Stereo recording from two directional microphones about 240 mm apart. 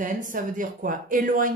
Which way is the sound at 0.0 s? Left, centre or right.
Right.